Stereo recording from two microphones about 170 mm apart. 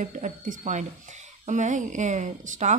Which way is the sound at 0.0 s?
45° right (ahead or behind).